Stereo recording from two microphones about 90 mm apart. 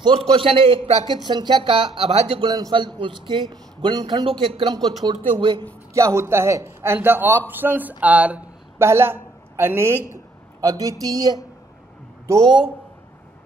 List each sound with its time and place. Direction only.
0.0 s a man's voice: 60° right (ahead or behind); by 2.5 s 90° right
2.7 s a man's voice: 65° right (ahead or behind)
5.0 s speech: 55° right (ahead or behind)
5.9 s a man's voice: 30° right (ahead or behind); by 8.5 s 15° right (ahead or behind)
8.7 s a woman's voice: 30° right (ahead or behind)
10.6 s speech: 40° right (ahead or behind)